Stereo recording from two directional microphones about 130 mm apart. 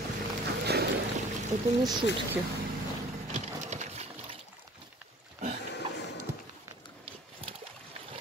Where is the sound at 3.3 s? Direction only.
60° right (ahead or behind).